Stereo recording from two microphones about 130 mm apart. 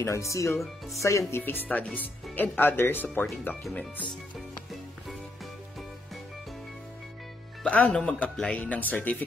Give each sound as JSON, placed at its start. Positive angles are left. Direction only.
{"t": 0.0, "sound": "speech", "side_deg": 20}
{"t": 7.6, "sound": "speech", "side_deg": 10}